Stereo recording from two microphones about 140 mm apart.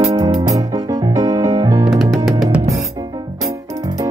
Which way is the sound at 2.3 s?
5° right (ahead or behind).